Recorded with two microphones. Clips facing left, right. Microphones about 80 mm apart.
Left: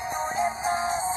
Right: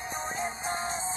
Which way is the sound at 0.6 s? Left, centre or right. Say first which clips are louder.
Left 7 dB; centre.